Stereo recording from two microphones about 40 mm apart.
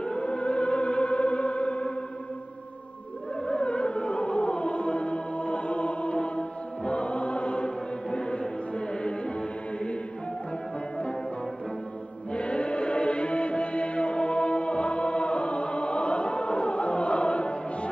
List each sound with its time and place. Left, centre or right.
0.0 s music: left
3.4 s music: left
12.3 s music: left